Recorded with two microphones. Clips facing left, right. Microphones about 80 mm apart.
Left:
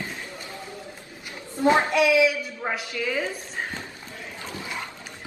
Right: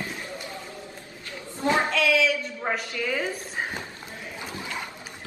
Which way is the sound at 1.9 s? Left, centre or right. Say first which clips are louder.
Left 3 dB; centre.